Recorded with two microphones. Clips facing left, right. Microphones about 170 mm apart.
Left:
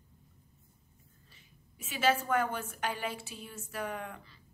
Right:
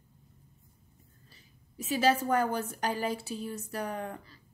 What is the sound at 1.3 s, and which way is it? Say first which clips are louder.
Speech: right 2 dB; 35° right (ahead or behind).